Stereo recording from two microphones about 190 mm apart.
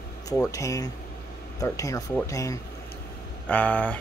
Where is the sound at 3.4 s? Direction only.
5° left (ahead or behind).